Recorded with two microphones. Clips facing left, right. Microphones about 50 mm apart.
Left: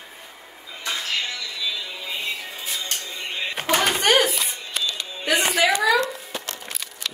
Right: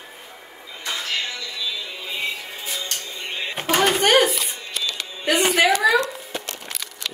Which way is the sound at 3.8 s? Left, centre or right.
Right.